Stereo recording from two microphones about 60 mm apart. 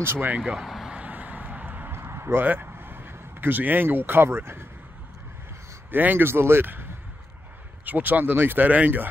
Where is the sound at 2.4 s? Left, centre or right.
Right.